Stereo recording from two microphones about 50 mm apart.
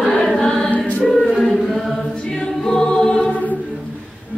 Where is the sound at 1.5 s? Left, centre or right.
Centre.